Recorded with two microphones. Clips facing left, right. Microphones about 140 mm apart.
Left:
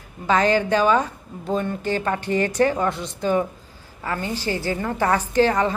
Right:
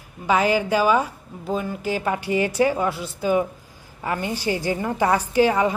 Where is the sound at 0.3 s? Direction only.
10° right (ahead or behind).